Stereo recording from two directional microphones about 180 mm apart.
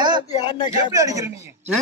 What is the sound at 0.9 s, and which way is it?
Speech, 20° right (ahead or behind).